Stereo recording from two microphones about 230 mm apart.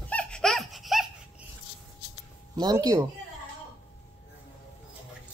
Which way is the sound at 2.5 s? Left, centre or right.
Centre.